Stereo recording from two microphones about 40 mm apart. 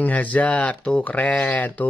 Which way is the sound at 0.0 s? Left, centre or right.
Left.